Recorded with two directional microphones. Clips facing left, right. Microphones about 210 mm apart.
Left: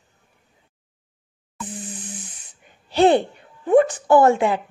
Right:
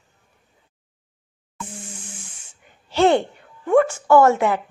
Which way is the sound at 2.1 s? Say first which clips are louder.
Left 5 dB; 20° left (ahead or behind).